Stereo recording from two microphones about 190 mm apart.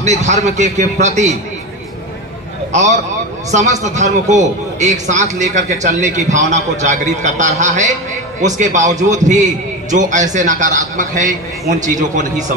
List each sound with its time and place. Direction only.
0.0 s a man's voice: 35° right (ahead or behind)
2.7 s a man's voice: 40° right (ahead or behind)